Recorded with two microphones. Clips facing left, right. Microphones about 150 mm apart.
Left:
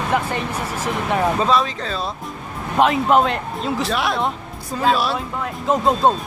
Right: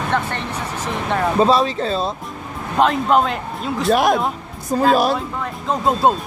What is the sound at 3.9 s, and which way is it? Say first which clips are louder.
Speech: right 5 dB; 45° right (ahead or behind).